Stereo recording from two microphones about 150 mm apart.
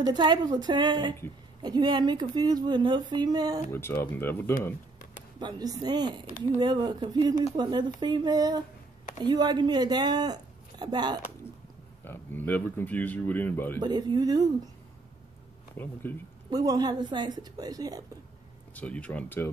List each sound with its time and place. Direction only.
0.0 s a woman's voice: 30° right (ahead or behind)
3.7 s speech: 15° left (ahead or behind)
5.4 s a woman's voice: 25° right (ahead or behind)
12.0 s speech: 15° left (ahead or behind)
13.7 s a woman's voice: 30° right (ahead or behind)
15.7 s speech: 15° left (ahead or behind)
16.4 s a woman's voice: 25° right (ahead or behind)
18.8 s speech: 10° left (ahead or behind)